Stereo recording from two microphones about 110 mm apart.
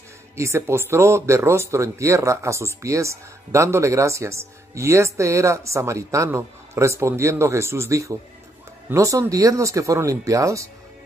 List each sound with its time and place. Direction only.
0.4 s speech: 25° right (ahead or behind)